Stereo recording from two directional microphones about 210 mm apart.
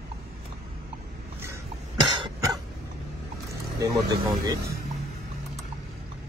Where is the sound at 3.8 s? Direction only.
20° right (ahead or behind).